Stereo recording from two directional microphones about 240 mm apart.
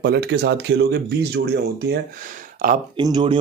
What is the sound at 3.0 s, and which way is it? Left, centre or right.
Speech, centre.